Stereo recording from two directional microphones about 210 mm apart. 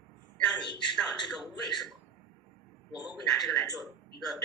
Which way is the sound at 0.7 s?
20° left (ahead or behind).